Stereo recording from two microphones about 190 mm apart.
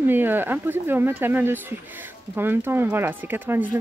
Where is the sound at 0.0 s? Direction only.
10° right (ahead or behind).